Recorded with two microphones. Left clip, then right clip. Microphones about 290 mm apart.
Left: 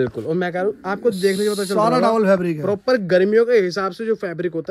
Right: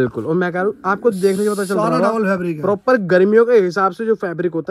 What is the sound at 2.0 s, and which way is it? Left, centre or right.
Speech, left.